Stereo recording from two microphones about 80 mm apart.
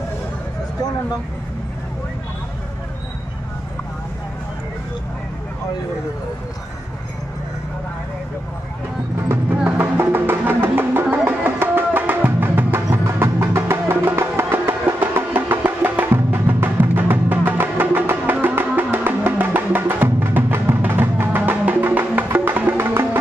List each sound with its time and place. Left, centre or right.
9.7 s music: right